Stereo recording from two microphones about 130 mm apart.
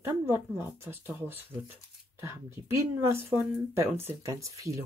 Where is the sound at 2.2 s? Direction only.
20° right (ahead or behind).